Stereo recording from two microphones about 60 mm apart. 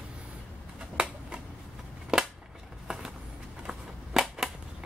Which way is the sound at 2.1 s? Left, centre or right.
Centre.